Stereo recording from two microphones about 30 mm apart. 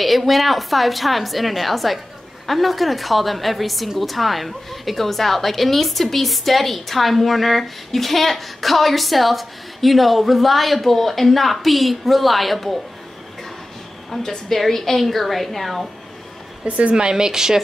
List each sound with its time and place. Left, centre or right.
0.0 s a woman's voice: centre
14.1 s a woman's voice: centre
16.6 s a woman's voice: right
16.9 s speech: right